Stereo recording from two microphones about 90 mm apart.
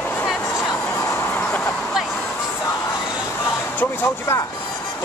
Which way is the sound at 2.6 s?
25° left (ahead or behind).